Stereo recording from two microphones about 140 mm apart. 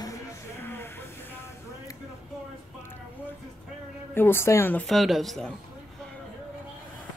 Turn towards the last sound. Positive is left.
turn(degrees=5)  # may be behind; listen again after turning